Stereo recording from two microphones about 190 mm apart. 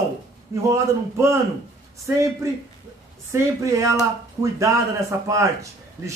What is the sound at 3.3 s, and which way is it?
Speech, 15° right (ahead or behind).